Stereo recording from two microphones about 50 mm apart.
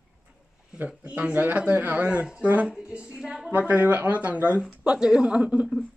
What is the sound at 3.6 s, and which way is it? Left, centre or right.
A man's voice, right.